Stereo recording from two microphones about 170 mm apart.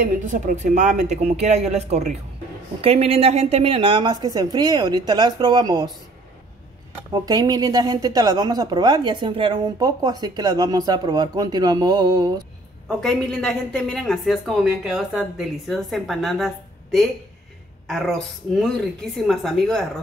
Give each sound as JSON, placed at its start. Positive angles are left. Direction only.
{"t": 0.0, "sound": "speech", "side_deg": -50}
{"t": 7.1, "sound": "speech", "side_deg": -25}
{"t": 12.8, "sound": "speech", "side_deg": 5}